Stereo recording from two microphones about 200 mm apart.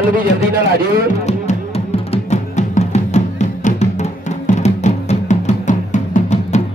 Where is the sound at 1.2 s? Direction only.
30° left (ahead or behind).